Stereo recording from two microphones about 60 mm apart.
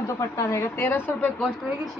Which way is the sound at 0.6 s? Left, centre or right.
Left.